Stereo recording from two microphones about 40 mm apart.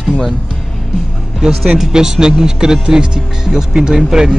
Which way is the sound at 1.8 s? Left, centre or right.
Centre.